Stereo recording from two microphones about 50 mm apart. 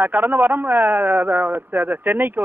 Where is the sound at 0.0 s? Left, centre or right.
Right.